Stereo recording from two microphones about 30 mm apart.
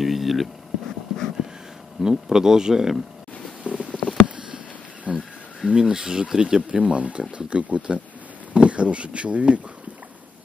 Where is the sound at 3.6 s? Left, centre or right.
Right.